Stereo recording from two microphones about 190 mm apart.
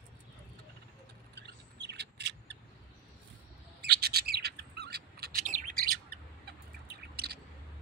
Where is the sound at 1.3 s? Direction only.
60° right (ahead or behind).